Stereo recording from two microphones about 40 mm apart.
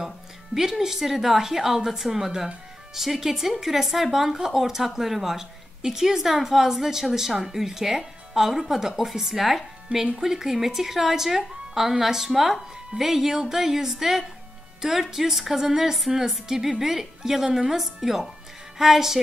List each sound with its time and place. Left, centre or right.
0.6 s a woman's voice: centre
9.9 s speech: right
10.2 s a woman's voice: centre